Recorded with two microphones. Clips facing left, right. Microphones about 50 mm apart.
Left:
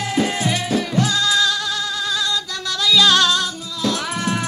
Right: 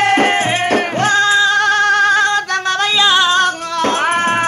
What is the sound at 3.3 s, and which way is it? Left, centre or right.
Music, right.